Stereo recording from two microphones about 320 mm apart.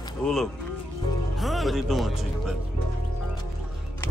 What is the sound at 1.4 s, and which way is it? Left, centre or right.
Music, centre.